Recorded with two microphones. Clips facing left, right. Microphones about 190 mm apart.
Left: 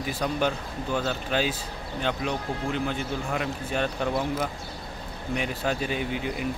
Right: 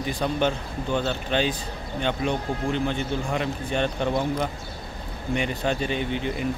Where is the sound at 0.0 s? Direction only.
5° left (ahead or behind).